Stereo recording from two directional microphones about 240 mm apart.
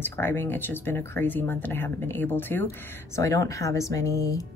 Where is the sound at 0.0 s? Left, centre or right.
Centre.